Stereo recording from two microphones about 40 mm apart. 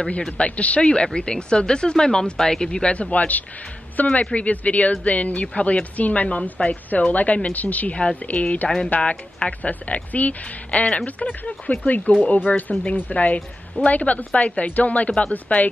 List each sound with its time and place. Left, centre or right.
0.0 s speech: left
3.0 s speech: left
6.9 s a woman's voice: left
7.9 s speech: left
8.2 s speech: left
8.6 s speech: centre
9.5 s a woman's voice: left
15.0 s speech: left
15.3 s speech: left